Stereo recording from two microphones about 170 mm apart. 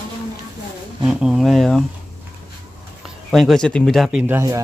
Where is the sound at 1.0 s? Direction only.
5° right (ahead or behind).